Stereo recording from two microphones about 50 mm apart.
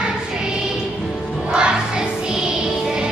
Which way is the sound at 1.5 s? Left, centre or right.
Centre.